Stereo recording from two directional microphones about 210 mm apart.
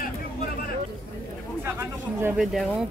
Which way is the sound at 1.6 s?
10° right (ahead or behind).